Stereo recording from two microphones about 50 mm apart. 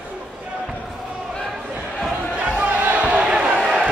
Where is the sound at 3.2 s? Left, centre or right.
Right.